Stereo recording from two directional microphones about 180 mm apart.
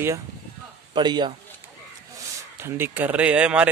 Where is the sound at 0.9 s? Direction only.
25° right (ahead or behind).